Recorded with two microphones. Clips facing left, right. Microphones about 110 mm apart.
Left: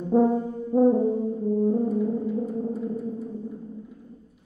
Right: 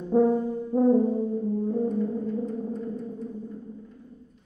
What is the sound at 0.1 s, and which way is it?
Brass instrument, 10° left (ahead or behind).